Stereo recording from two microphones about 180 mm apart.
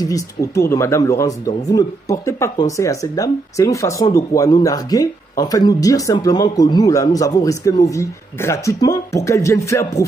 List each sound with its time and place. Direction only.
0.0 s speech: 15° left (ahead or behind)